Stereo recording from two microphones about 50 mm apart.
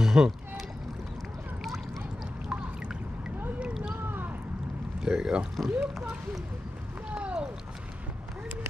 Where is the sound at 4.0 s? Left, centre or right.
Right.